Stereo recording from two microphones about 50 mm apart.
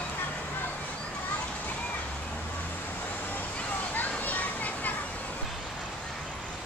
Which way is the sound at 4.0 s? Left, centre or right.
Left.